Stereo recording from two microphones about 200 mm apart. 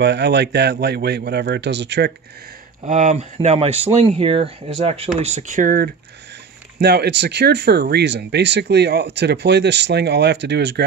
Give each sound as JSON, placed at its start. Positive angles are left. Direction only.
{"t": 0.0, "sound": "speech", "side_deg": -60}
{"t": 2.9, "sound": "speech", "side_deg": -35}
{"t": 6.8, "sound": "speech", "side_deg": -55}